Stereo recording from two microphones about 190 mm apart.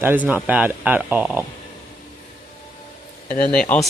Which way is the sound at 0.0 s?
10° right (ahead or behind).